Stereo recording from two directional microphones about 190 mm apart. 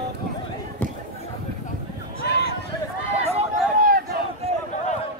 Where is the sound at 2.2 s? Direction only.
55° left (ahead or behind).